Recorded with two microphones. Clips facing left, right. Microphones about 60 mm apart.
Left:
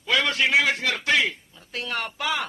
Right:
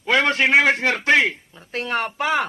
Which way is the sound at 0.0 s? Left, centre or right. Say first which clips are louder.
Right 5 dB; right.